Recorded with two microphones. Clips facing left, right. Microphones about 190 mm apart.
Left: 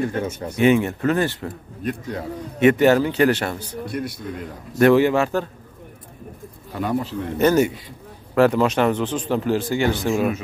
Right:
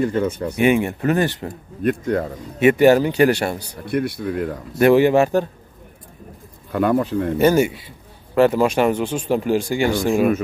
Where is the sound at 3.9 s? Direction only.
60° right (ahead or behind).